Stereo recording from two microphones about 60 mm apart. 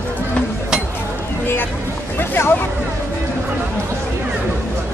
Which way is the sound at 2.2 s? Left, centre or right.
Left.